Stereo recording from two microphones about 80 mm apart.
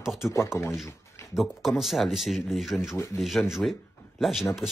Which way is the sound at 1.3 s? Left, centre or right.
Centre.